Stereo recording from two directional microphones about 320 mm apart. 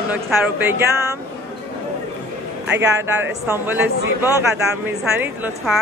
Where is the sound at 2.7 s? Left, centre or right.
Centre.